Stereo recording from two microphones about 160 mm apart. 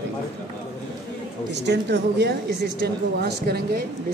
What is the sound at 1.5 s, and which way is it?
A woman's voice, 90° right.